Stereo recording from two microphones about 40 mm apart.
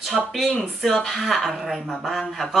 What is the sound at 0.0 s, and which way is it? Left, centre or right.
Speech, centre.